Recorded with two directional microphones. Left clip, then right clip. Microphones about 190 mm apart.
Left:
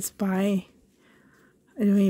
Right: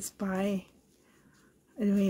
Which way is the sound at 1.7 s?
50° left (ahead or behind).